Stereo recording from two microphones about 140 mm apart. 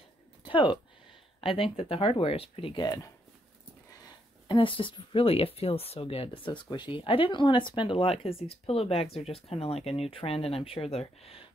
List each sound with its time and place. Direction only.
0.5 s speech: 35° left (ahead or behind)
4.5 s speech: 35° left (ahead or behind)